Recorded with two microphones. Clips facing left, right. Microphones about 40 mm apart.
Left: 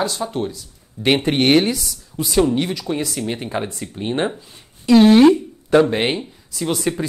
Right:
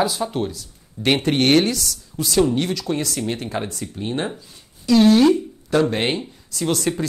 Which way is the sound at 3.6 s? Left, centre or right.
Left.